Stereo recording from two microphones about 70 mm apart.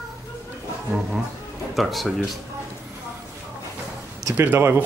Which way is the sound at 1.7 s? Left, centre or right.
Centre.